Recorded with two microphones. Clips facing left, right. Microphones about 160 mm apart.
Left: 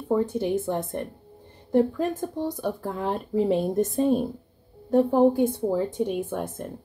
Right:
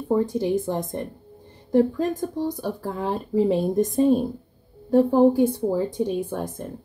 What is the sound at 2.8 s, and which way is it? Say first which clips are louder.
Speech: right 1 dB; 5° right (ahead or behind).